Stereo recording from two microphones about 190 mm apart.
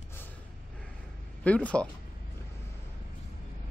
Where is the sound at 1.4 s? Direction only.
5° left (ahead or behind).